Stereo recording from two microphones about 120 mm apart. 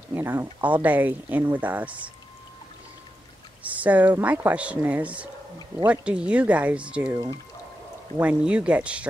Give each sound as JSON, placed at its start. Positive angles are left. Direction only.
{"t": 0.1, "sound": "speech", "side_deg": -20}
{"t": 3.6, "sound": "speech", "side_deg": -10}
{"t": 8.2, "sound": "speech", "side_deg": -10}